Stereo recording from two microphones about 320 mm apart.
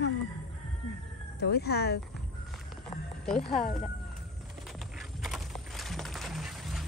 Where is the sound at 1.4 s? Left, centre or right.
Left.